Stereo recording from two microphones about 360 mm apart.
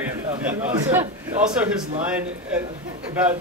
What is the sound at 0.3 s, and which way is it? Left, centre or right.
Speech, centre.